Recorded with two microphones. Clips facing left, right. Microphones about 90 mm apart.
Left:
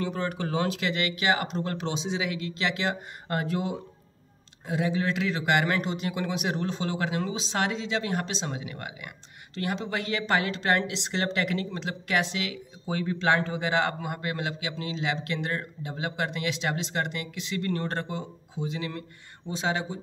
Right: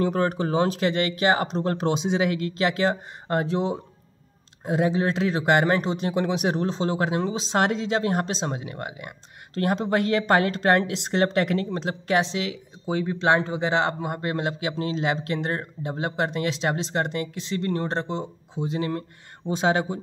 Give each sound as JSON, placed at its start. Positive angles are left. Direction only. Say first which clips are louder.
{"t": 0.0, "sound": "speech", "louder": "right 7 dB", "side_deg": -45}
{"t": 0.4, "sound": "speech", "louder": "right 6 dB", "side_deg": -35}
{"t": 4.6, "sound": "speech", "louder": "right 5 dB", "side_deg": -40}
{"t": 9.5, "sound": "speech", "louder": "right 7 dB", "side_deg": -45}
{"t": 18.7, "sound": "speech", "louder": "right 9 dB", "side_deg": -40}
{"t": 19.5, "sound": "speech", "louder": "right 7 dB", "side_deg": -55}